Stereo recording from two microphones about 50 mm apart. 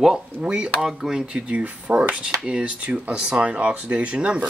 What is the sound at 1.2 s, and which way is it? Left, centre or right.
Speech, right.